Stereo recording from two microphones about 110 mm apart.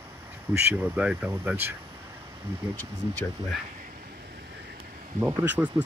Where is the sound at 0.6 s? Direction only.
15° right (ahead or behind).